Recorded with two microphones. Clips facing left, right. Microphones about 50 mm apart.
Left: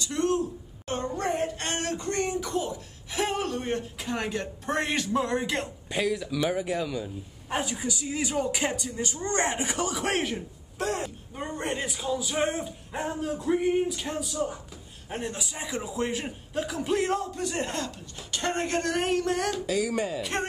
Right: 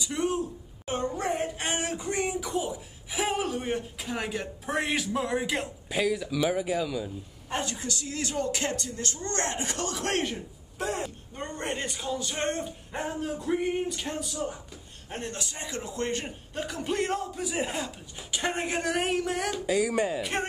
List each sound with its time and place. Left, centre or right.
0.0 s a woman's voice: centre
19.6 s speech: centre